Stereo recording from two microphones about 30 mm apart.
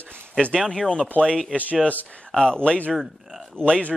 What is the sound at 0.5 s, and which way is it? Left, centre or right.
Speech, centre.